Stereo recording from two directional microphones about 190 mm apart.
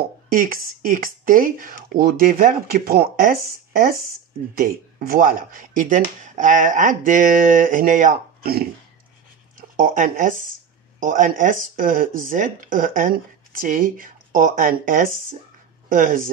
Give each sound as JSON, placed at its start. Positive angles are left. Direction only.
{"t": 0.3, "sound": "speech", "side_deg": -50}